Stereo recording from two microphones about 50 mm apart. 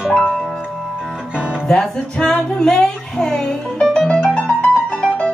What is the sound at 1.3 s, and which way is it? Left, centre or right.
Music, centre.